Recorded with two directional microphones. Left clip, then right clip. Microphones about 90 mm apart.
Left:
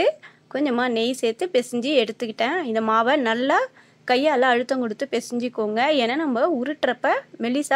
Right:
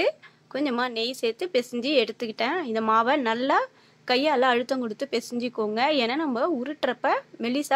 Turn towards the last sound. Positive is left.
turn(degrees=20)  # may be behind; listen again after turning